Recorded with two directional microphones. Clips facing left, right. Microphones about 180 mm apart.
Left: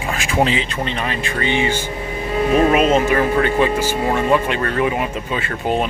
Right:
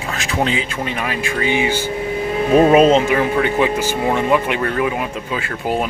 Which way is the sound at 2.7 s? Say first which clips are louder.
Right 4 dB; 35° right (ahead or behind).